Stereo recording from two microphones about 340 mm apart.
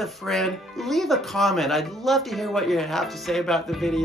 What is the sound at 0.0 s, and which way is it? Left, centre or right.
Speech, centre.